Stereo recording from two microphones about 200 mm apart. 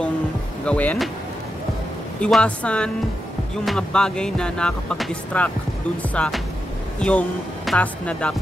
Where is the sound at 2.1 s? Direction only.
5° left (ahead or behind).